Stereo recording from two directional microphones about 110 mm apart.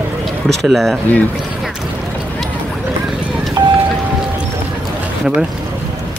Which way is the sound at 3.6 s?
40° right (ahead or behind).